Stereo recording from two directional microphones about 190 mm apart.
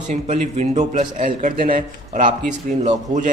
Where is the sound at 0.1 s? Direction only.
35° right (ahead or behind).